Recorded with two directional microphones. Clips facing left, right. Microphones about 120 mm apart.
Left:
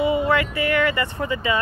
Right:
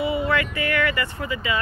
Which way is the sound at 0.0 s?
20° left (ahead or behind).